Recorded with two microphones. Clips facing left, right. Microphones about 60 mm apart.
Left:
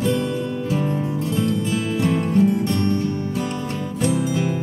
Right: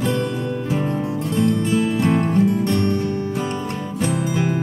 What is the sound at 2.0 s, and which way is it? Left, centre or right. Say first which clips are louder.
Music: right 2 dB; right.